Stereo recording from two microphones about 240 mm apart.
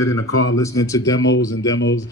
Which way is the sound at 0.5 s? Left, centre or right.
Centre.